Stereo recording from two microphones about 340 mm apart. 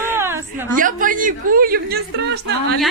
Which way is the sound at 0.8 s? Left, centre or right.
Right.